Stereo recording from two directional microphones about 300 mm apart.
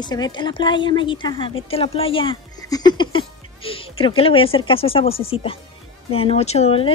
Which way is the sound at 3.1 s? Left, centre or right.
Centre.